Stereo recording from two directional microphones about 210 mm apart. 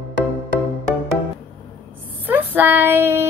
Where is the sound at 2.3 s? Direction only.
10° right (ahead or behind).